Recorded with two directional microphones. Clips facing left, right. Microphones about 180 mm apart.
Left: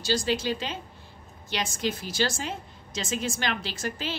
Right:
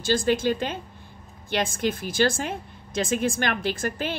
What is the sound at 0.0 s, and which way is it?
A woman's voice, 50° right (ahead or behind).